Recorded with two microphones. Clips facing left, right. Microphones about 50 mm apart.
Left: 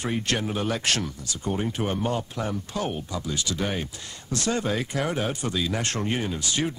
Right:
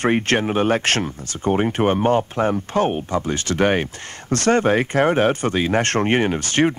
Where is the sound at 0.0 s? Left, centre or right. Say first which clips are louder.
Right 9 dB; right.